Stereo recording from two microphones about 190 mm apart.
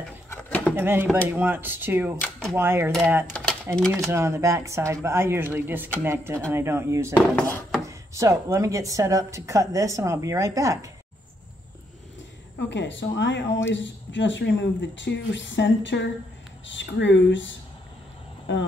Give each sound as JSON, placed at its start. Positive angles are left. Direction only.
{"t": 0.3, "sound": "a sound", "side_deg": 10}
{"t": 0.7, "sound": "speech", "side_deg": -10}
{"t": 2.1, "sound": "speech", "side_deg": 5}
{"t": 2.5, "sound": "speech", "side_deg": -10}
{"t": 12.5, "sound": "speech", "side_deg": 70}